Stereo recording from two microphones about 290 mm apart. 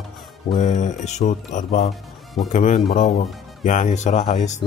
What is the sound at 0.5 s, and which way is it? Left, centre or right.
A man's voice, left.